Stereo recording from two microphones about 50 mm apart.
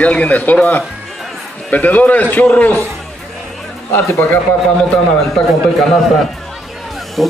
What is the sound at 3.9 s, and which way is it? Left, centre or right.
Speech, left.